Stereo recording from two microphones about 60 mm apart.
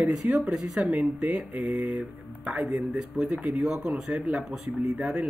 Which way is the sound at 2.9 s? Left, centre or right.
Centre.